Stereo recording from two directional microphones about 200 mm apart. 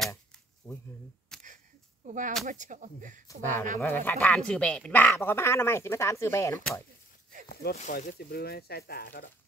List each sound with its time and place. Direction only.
1.3 s a sound: centre (ahead or behind)
2.0 s speech: 40° right (ahead or behind)
3.3 s speech: 10° left (ahead or behind)
7.7 s speech: 35° left (ahead or behind)